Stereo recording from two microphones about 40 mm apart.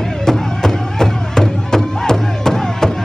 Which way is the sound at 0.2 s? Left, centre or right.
Centre.